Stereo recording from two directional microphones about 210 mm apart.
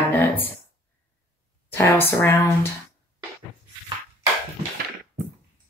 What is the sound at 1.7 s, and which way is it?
Speech, 10° left (ahead or behind).